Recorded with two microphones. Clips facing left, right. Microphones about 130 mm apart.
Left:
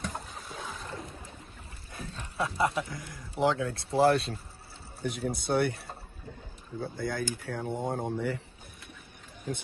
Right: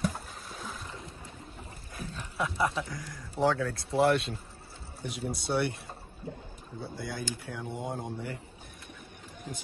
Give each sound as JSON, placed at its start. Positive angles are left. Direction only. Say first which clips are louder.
{"t": 0.0, "sound": "boat", "louder": "right 4 dB", "side_deg": 0}
{"t": 2.0, "sound": "speech", "louder": "left 1 dB", "side_deg": 30}
{"t": 5.0, "sound": "speech", "louder": "left 3 dB", "side_deg": 50}
{"t": 6.8, "sound": "speech", "louder": "left 5 dB", "side_deg": 50}